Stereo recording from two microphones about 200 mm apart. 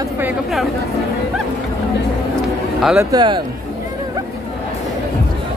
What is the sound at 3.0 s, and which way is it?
Speech, 20° right (ahead or behind).